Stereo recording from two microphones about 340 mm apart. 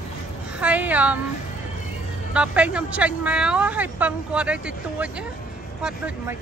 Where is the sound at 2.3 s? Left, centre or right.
Centre.